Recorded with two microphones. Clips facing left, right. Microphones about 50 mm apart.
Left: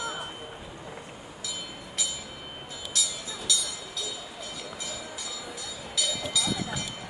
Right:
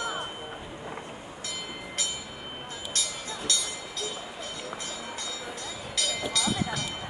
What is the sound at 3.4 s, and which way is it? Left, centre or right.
Train, right.